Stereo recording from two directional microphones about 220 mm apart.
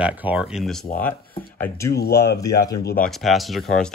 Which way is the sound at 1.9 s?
45° left (ahead or behind).